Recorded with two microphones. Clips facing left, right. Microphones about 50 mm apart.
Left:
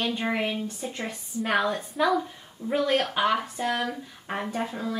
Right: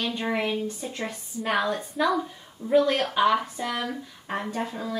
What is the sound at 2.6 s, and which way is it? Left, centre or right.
Speech, centre.